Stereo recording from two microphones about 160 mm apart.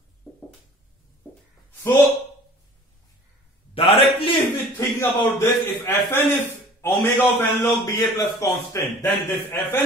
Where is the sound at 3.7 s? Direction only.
35° left (ahead or behind).